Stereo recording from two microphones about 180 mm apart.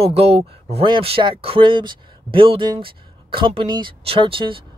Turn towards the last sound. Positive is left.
turn(degrees=-30)  # may be behind; listen again after turning